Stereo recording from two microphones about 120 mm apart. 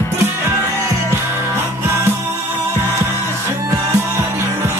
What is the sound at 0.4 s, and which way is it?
Music, 20° right (ahead or behind).